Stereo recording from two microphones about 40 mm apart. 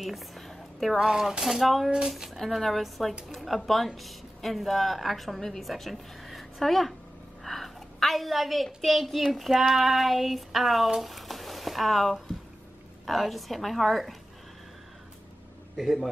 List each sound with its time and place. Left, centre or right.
0.0 s a sound: centre
0.9 s speech: centre
1.4 s speech: centre
1.9 s speech: right
2.3 s a woman's voice: centre
7.4 s a sound: centre
8.8 s speech: centre
11.0 s a sound: centre
13.0 s speech: centre
15.7 s a man's voice: centre